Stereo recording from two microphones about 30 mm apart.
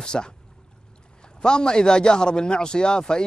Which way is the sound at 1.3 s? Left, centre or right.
Left.